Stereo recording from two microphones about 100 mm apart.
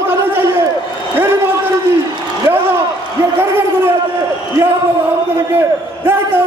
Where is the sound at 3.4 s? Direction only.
20° right (ahead or behind).